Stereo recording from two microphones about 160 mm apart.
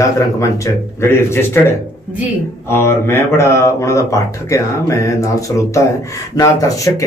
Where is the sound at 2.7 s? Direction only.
15° left (ahead or behind).